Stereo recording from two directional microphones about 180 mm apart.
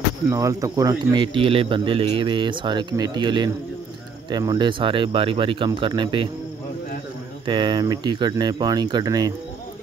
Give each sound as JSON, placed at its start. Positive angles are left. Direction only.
{"t": 0.3, "sound": "speech", "side_deg": -15}
{"t": 7.4, "sound": "speech", "side_deg": -25}